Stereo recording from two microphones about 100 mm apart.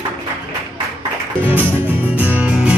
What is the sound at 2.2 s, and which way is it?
Music, 15° right (ahead or behind).